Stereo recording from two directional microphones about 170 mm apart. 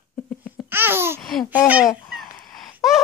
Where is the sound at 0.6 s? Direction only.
15° right (ahead or behind).